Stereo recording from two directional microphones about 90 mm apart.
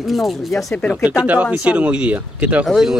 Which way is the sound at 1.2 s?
15° right (ahead or behind).